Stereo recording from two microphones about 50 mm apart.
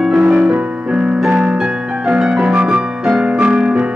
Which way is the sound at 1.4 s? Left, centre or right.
Right.